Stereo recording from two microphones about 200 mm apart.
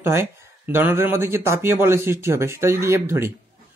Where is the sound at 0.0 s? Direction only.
10° right (ahead or behind).